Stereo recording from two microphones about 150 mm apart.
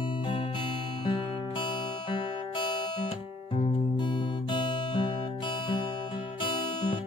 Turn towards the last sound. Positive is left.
turn(degrees=30)  # may be behind; listen again after turning